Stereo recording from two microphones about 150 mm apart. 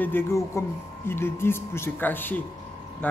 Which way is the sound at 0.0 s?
15° left (ahead or behind).